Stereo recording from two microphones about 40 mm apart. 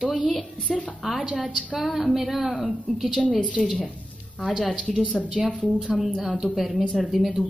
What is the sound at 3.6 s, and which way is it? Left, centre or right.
Speech, centre.